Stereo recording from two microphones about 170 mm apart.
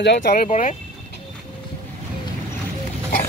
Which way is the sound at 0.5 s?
45° left (ahead or behind).